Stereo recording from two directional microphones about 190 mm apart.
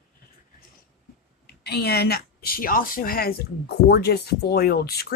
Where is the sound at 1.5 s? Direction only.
60° left (ahead or behind).